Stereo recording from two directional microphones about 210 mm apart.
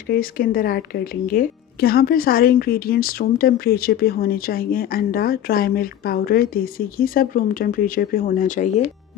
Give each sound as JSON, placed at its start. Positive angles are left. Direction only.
{"t": 0.0, "sound": "speech", "side_deg": 45}